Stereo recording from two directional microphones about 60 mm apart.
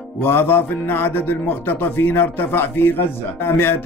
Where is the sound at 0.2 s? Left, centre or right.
Left.